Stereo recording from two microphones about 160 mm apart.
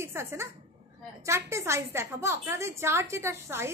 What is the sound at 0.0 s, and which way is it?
A woman's voice, 15° right (ahead or behind).